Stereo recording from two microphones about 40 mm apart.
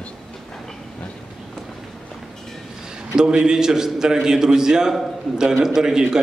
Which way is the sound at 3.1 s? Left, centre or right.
Centre.